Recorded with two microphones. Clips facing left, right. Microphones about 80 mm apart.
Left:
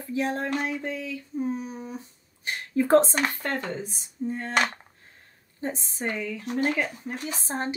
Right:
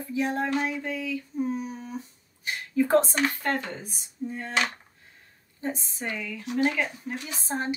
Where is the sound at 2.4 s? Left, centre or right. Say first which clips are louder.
Even; left.